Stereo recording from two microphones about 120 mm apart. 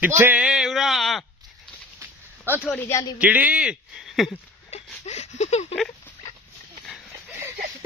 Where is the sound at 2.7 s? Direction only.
20° left (ahead or behind).